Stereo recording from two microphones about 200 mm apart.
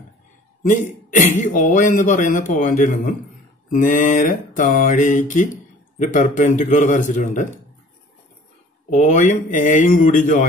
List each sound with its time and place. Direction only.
1.1 s speech: 40° left (ahead or behind)
8.9 s speech: 40° left (ahead or behind)